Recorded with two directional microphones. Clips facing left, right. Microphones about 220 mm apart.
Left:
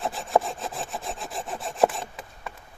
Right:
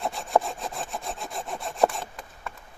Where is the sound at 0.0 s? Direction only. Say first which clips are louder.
Left 1 dB; centre (ahead or behind).